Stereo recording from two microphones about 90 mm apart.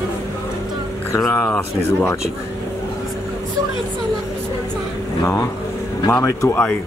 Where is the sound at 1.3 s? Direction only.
15° left (ahead or behind).